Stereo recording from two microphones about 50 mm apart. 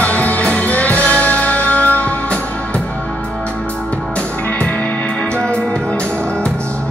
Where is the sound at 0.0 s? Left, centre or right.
Left.